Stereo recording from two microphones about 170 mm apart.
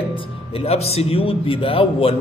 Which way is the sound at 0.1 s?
30° left (ahead or behind).